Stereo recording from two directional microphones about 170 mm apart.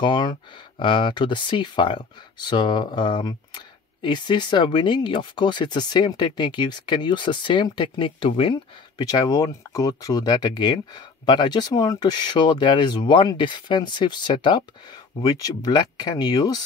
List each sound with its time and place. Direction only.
0.0 s speech: 25° left (ahead or behind)